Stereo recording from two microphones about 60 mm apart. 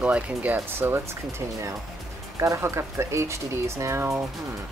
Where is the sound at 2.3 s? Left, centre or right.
Right.